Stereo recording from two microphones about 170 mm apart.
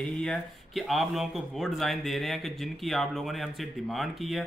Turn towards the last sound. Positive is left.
turn(degrees=0)  # may be behind; listen again after turning